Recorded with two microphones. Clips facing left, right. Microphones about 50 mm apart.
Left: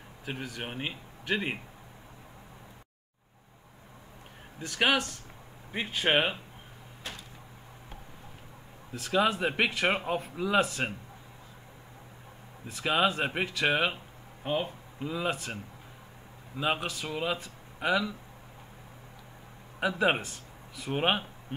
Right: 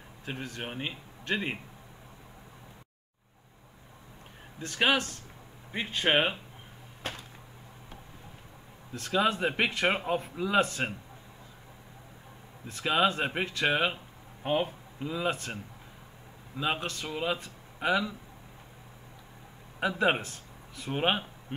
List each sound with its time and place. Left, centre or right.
0.2 s speech: centre
4.6 s speech: centre
7.0 s a sound: right
8.9 s speech: centre
12.6 s speech: centre
14.4 s speech: centre
15.0 s speech: centre
16.6 s speech: centre
19.8 s speech: centre